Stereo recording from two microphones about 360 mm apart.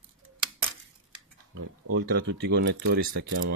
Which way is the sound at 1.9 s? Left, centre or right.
Right.